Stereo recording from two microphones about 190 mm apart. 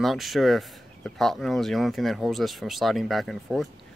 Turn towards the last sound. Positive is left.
turn(degrees=0)  # may be behind; listen again after turning